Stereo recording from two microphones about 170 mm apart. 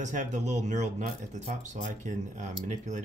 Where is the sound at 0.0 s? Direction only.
45° right (ahead or behind).